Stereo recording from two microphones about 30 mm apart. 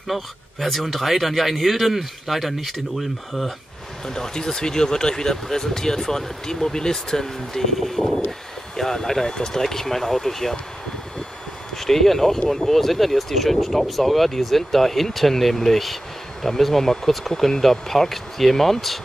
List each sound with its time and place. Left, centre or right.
0.1 s speech: centre
4.0 s speech: centre
7.8 s speech: centre
11.7 s speech: centre